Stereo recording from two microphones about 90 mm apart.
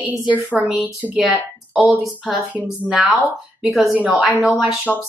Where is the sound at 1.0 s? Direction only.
15° right (ahead or behind).